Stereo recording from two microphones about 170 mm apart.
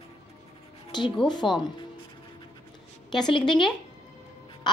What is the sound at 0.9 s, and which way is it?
Speech, 25° left (ahead or behind).